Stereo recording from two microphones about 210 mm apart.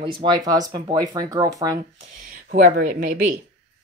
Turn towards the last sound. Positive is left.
turn(degrees=-40)  # may be behind; listen again after turning